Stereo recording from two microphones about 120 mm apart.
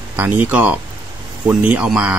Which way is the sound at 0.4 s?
15° right (ahead or behind).